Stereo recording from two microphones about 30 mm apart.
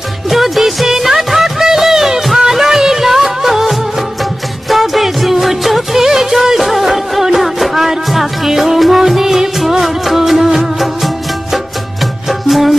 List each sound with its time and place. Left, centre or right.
0.3 s music: centre